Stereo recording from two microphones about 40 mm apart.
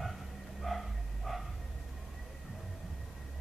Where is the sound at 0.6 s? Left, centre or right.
Centre.